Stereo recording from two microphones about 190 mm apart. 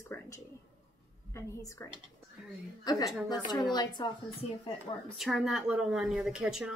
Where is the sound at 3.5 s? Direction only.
20° left (ahead or behind).